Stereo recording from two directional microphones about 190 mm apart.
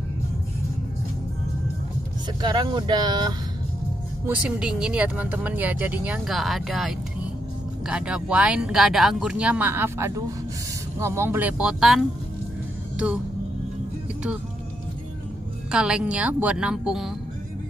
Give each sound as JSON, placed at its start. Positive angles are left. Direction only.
{"t": 2.4, "sound": "speech", "side_deg": -25}
{"t": 4.3, "sound": "speech", "side_deg": -5}
{"t": 12.9, "sound": "music", "side_deg": -5}
{"t": 15.7, "sound": "speech", "side_deg": -5}